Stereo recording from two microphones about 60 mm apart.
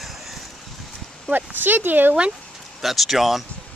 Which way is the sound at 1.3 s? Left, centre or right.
Right.